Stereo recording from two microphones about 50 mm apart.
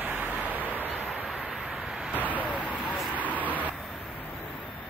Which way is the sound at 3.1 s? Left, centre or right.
Right.